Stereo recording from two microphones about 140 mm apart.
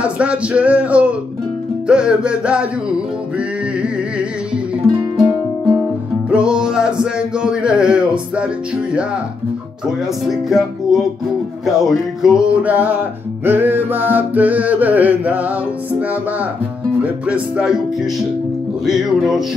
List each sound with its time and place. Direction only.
0.0 s music: 10° right (ahead or behind)
3.3 s a sound: 10° right (ahead or behind)
6.3 s music: 5° right (ahead or behind)
9.8 s speech: centre (ahead or behind)
11.6 s music: centre (ahead or behind)
18.9 s speech: centre (ahead or behind)